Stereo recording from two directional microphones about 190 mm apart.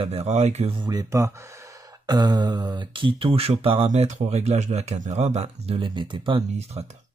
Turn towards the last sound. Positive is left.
turn(degrees=-30)  # may be behind; listen again after turning